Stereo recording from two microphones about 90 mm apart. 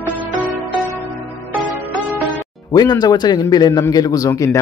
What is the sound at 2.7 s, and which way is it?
A man's voice, 45° left (ahead or behind).